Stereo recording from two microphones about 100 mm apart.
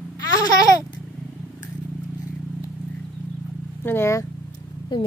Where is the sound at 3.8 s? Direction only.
25° left (ahead or behind).